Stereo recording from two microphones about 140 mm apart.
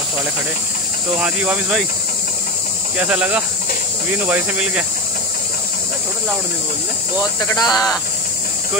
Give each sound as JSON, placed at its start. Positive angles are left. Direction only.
{"t": 1.2, "sound": "speech", "side_deg": -10}
{"t": 3.0, "sound": "speech", "side_deg": -10}
{"t": 7.5, "sound": "speech", "side_deg": 25}